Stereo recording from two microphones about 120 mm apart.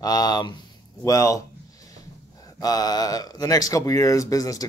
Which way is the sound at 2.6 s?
30° left (ahead or behind).